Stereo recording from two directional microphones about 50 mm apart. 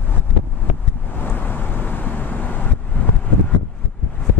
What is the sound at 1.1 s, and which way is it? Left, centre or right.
Vehicle, left.